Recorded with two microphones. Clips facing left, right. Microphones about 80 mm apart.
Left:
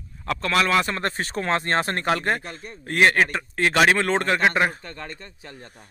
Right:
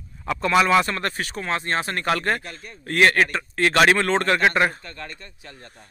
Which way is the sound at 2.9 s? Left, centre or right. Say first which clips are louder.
Right 1 dB; centre.